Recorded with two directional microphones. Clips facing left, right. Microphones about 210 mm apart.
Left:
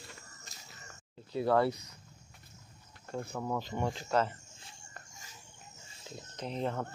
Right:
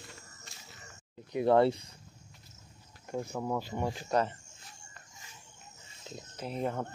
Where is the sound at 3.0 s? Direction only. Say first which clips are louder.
Right 2 dB; 15° right (ahead or behind).